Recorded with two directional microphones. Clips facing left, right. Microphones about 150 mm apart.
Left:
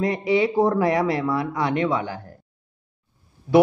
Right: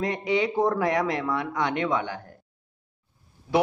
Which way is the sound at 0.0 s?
10° left (ahead or behind).